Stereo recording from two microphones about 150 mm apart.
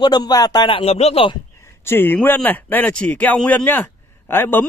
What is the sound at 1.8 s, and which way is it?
Speech, 15° left (ahead or behind).